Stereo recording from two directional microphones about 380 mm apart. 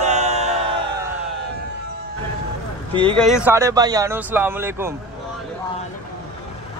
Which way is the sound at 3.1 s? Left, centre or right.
Centre.